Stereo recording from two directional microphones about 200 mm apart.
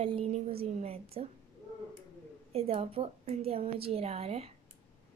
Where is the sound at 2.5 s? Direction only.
30° right (ahead or behind).